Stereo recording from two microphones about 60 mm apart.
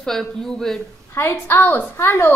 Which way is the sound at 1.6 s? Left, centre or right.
Left.